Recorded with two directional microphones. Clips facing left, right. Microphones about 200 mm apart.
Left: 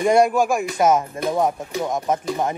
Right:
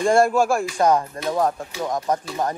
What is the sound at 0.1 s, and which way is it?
Speech, 15° left (ahead or behind).